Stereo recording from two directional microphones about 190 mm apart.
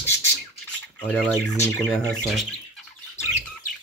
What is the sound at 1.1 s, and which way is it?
Speech, 5° left (ahead or behind).